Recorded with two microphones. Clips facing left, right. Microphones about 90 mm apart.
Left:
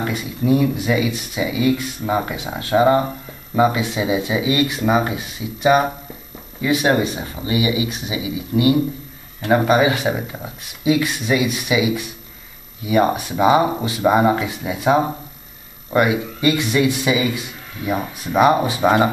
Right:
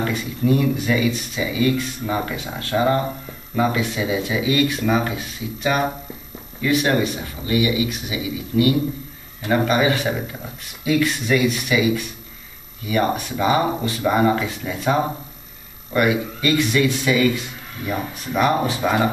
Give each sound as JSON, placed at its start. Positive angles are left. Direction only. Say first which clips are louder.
{"t": 0.0, "sound": "speech", "louder": "even", "side_deg": 15}
{"t": 18.4, "sound": "speech", "louder": "left 4 dB", "side_deg": 10}